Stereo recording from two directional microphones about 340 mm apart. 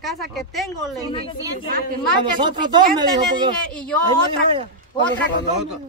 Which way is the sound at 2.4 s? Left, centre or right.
Centre.